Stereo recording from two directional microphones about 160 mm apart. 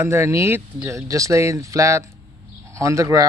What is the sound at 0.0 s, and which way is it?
Speech, 15° right (ahead or behind).